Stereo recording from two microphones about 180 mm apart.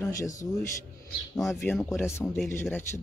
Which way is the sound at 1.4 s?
Centre (ahead or behind).